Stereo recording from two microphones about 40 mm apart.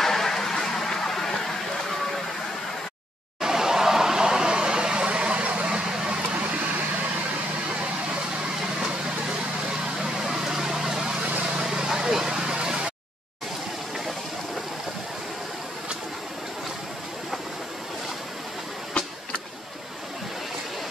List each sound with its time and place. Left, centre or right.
0.0 s a sound: centre
3.3 s vehicle: centre
10.1 s vehicle: centre